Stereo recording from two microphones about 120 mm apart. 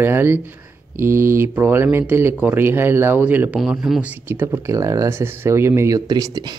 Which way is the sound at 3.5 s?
Centre (ahead or behind).